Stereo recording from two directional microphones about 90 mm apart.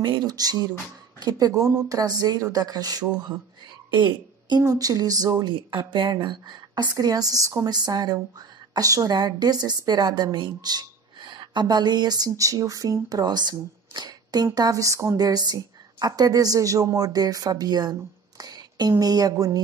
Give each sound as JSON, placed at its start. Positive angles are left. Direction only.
{"t": 0.0, "sound": "a woman's voice", "side_deg": -55}
{"t": 3.9, "sound": "throat clearing", "side_deg": -60}
{"t": 4.6, "sound": "a woman's voice", "side_deg": -45}
{"t": 5.6, "sound": "a woman's voice", "side_deg": -65}